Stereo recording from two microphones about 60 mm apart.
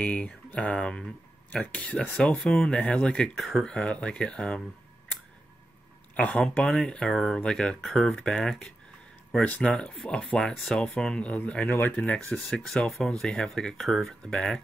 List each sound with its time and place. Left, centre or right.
0.0 s speech: left
1.6 s speech: left
3.3 s speech: centre
3.6 s speech: centre
6.1 s speech: left
6.9 s speech: centre
9.6 s speech: centre